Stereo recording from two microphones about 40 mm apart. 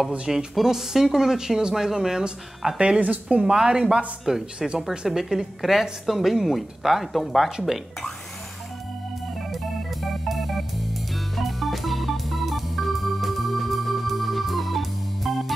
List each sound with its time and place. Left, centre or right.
0.6 s speech: centre
3.0 s speech: right
3.4 s speech: centre
10.2 s music: centre
11.3 s organ: centre